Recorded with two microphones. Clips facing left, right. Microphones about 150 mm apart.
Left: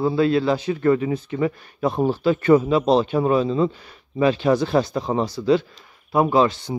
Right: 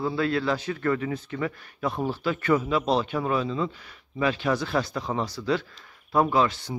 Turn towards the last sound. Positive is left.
turn(degrees=25)  # may be behind; listen again after turning